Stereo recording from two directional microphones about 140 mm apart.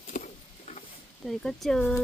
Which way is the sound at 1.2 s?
Centre (ahead or behind).